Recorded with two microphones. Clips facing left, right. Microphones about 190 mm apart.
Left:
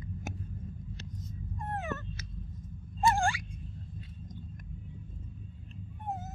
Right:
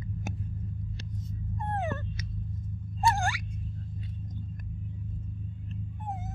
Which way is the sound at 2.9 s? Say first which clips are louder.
Even; 25° left (ahead or behind).